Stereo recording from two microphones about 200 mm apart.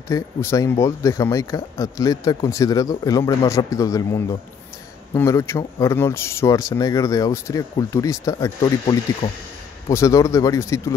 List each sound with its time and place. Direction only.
0.1 s speech: 15° left (ahead or behind)